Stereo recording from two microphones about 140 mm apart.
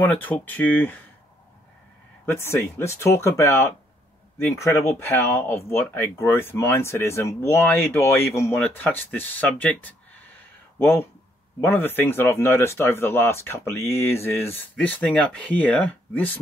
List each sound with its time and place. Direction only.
0.0 s speech: 15° left (ahead or behind)
2.2 s speech: 20° left (ahead or behind)